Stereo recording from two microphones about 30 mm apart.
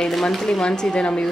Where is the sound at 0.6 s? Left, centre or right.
Left.